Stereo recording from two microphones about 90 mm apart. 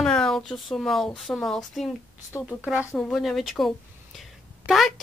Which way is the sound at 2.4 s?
10° right (ahead or behind).